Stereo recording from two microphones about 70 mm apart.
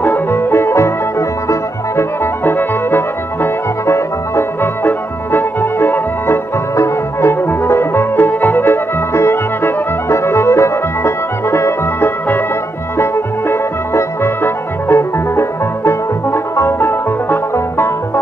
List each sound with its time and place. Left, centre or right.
0.0 s music: left